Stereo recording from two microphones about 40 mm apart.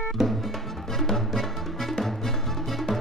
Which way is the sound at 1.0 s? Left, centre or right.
Centre.